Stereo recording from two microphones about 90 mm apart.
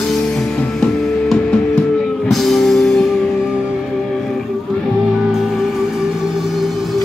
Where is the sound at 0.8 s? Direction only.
10° left (ahead or behind).